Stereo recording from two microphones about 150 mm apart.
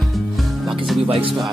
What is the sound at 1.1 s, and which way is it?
Music, 35° right (ahead or behind).